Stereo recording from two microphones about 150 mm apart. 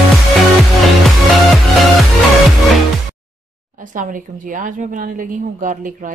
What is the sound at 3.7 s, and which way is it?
A woman's voice, 60° right (ahead or behind).